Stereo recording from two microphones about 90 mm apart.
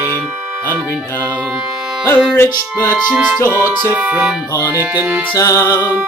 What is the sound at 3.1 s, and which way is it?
Music, 15° right (ahead or behind).